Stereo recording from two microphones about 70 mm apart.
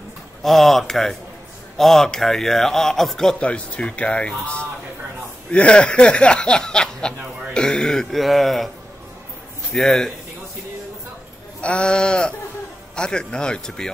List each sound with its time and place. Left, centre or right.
0.4 s speech: centre
3.4 s speech: centre
9.7 s speech: centre
11.6 s speech: centre